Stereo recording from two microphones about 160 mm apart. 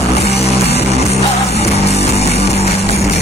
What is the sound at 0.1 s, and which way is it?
Music, 40° left (ahead or behind).